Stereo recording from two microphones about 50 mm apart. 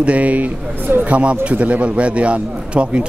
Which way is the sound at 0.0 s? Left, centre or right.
Right.